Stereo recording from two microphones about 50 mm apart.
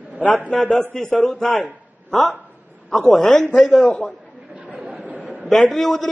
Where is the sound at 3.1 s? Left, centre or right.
Centre.